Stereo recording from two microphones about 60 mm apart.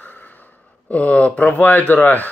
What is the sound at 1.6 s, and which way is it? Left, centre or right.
Speech, left.